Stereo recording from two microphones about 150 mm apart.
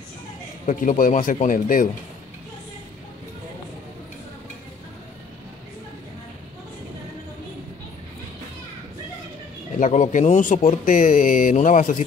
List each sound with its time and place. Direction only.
0.7 s speech: 60° left (ahead or behind)
9.8 s speech: 55° left (ahead or behind)